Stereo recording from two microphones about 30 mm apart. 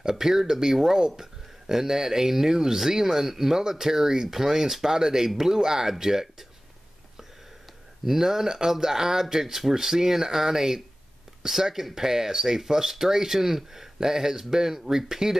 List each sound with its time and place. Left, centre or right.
0.0 s speech: centre
8.0 s speech: centre